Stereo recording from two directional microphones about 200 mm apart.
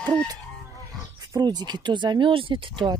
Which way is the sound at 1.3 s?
20° right (ahead or behind).